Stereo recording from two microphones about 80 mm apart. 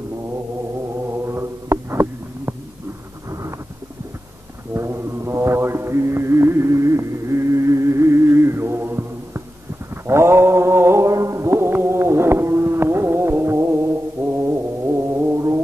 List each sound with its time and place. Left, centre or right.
1.1 s a sound: right
4.7 s mantra: right
15.1 s music: right